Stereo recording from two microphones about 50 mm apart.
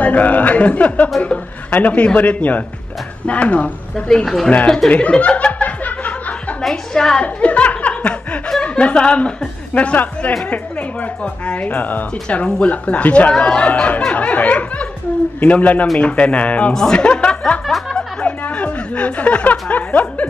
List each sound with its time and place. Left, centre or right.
0.0 s speech: left
4.1 s speech: centre
4.8 s chuckle: left
6.6 s a woman's voice: centre
7.2 s chuckle: left
8.6 s speech: left
16.7 s speech: centre
17.0 s chuckle: left
17.6 s snicker: centre
18.2 s speech: left